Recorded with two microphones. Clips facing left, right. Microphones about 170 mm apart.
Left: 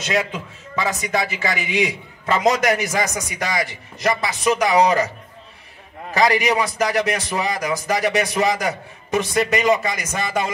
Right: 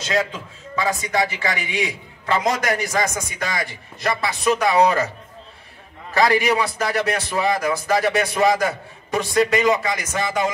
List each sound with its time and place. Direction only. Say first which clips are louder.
0.0 s a man's voice: even; 20° left (ahead or behind)
6.1 s a man's voice: even; 20° left (ahead or behind)